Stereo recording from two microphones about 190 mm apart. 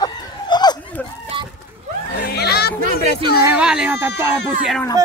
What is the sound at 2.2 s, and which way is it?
Chatter, 55° left (ahead or behind).